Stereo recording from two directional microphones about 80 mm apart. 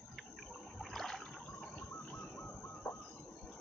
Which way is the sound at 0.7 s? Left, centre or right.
Centre.